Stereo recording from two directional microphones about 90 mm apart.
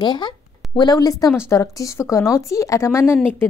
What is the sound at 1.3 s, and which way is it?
Speech, 35° left (ahead or behind).